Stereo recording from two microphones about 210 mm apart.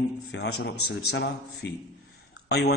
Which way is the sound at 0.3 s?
55° left (ahead or behind).